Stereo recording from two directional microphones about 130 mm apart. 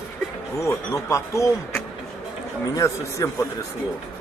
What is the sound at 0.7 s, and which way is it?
Speech, 25° left (ahead or behind).